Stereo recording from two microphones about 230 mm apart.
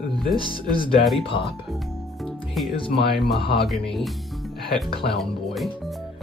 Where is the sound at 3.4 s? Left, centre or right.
Left.